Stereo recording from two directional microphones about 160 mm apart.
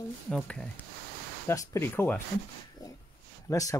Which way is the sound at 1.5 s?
20° left (ahead or behind).